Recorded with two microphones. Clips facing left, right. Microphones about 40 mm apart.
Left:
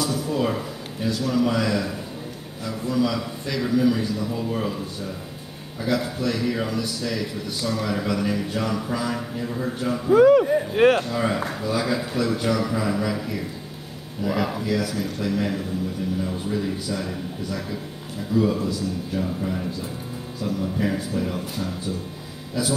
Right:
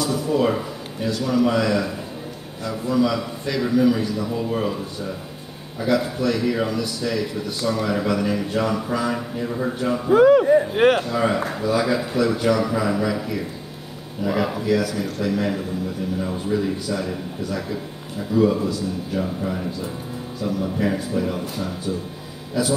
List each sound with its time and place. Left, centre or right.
0.1 s a man's voice: centre
10.1 s speech: right
10.4 s a man's voice: centre